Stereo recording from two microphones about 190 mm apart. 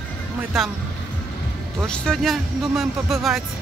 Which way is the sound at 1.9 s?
5° left (ahead or behind).